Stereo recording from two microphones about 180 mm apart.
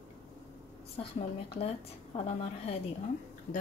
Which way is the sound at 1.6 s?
35° left (ahead or behind).